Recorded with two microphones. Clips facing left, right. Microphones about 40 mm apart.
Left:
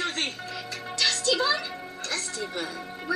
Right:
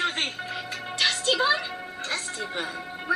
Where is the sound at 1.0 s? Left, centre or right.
Right.